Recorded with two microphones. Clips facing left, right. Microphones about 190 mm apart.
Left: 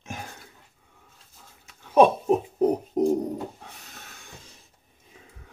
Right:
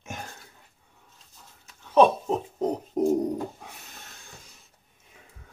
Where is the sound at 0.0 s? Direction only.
Centre (ahead or behind).